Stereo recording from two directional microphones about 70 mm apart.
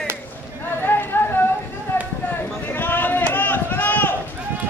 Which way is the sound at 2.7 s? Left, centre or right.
Left.